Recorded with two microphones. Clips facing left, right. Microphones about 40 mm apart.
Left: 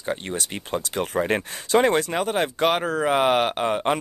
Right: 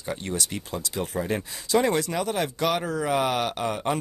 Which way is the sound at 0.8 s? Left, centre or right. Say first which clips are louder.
Left 5 dB; left.